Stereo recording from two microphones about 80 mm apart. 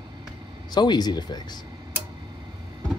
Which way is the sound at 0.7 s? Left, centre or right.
Left.